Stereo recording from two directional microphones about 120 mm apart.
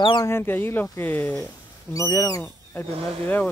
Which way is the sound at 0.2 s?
20° left (ahead or behind).